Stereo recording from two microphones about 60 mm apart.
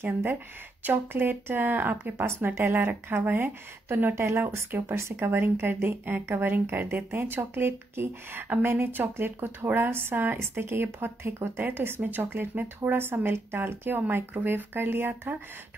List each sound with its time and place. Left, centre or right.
0.0 s speech: right
2.4 s speech: right
2.7 s speech: right
4.1 s speech: right
4.4 s speech: right
4.9 s speech: right